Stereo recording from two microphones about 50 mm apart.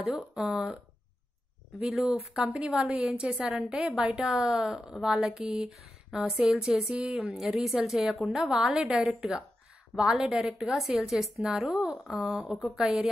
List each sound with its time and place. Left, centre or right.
0.1 s a woman's voice: centre
1.8 s a woman's voice: centre
2.3 s a woman's voice: centre
8.5 s a woman's voice: centre
10.4 s speech: centre
11.6 s a woman's voice: centre